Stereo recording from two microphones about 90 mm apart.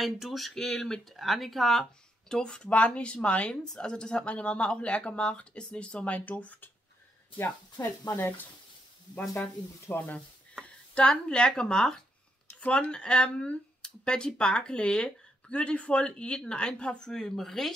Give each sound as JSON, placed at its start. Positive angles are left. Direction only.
{"t": 0.0, "sound": "speech", "side_deg": 0}
{"t": 7.8, "sound": "speech", "side_deg": 35}
{"t": 8.2, "sound": "stir", "side_deg": 25}
{"t": 9.4, "sound": "speech", "side_deg": 20}